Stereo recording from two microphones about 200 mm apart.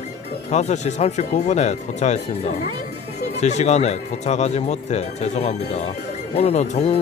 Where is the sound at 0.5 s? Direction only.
35° left (ahead or behind).